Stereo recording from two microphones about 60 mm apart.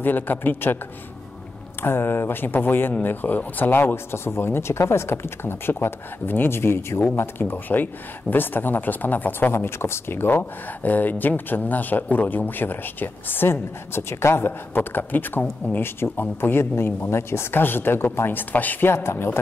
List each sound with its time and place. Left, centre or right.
0.0 s speech: left
1.8 s speech: left
18.9 s speech: left